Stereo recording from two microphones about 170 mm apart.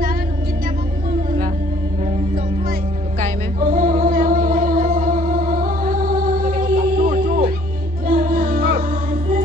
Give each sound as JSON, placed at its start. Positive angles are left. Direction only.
{"t": 3.2, "sound": "music", "side_deg": -50}
{"t": 6.7, "sound": "music", "side_deg": -40}
{"t": 8.1, "sound": "music", "side_deg": -55}